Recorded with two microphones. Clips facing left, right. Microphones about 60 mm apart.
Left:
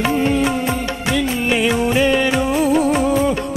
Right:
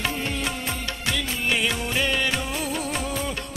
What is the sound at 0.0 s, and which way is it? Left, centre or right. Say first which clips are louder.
Music: left 11 dB; left.